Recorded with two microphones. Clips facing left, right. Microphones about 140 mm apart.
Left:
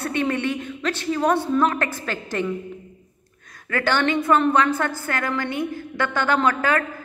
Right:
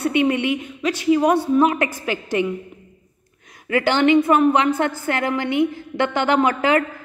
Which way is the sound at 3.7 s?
15° right (ahead or behind).